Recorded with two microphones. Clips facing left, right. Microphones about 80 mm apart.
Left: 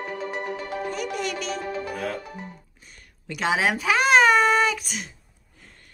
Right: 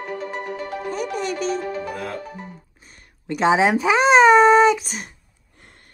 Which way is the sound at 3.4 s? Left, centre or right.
Right.